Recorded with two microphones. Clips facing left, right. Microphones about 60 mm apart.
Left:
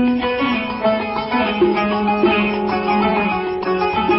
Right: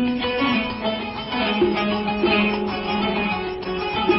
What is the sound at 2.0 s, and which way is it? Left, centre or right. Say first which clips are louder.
Music: left 6 dB; left.